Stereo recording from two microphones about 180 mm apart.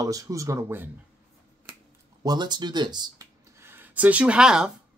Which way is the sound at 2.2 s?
25° right (ahead or behind).